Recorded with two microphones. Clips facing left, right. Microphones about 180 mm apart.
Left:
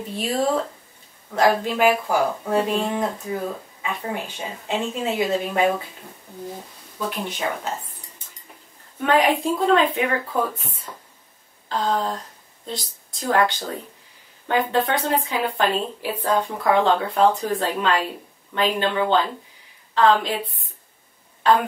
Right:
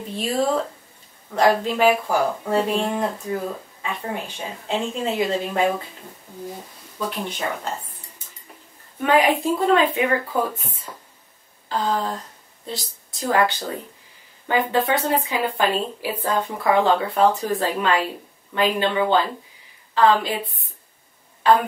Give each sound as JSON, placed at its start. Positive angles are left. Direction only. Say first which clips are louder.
{"t": 0.2, "sound": "speech", "louder": "even", "side_deg": 10}
{"t": 7.0, "sound": "speech", "louder": "even", "side_deg": 5}
{"t": 9.0, "sound": "speech", "louder": "right 1 dB", "side_deg": -5}
{"t": 13.2, "sound": "speech", "louder": "even", "side_deg": -5}